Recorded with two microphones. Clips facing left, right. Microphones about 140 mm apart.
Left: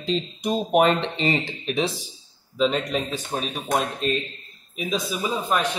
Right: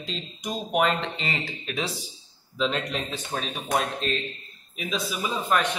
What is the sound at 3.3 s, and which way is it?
Speech, 20° left (ahead or behind).